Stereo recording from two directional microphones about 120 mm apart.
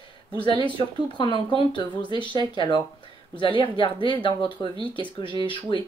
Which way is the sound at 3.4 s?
45° left (ahead or behind).